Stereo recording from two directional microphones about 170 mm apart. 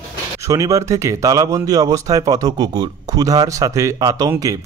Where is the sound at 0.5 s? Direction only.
20° right (ahead or behind).